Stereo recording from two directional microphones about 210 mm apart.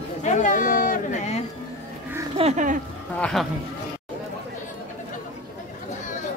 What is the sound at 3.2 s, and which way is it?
Speech, 5° left (ahead or behind).